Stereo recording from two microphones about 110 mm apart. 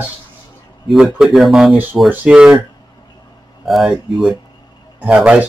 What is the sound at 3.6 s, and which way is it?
Speech, centre (ahead or behind).